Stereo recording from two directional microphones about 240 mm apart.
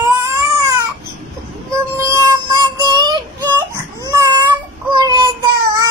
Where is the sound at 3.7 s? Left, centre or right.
Centre.